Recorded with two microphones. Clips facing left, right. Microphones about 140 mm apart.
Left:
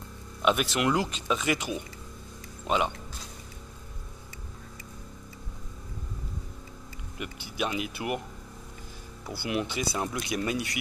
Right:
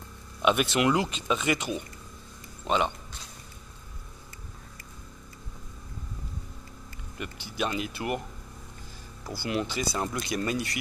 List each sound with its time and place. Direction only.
0.4 s speech: centre (ahead or behind)
7.2 s speech: 5° left (ahead or behind)
9.4 s speech: 10° left (ahead or behind)